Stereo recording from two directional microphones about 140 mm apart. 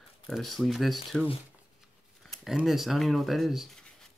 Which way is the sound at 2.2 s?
5° left (ahead or behind).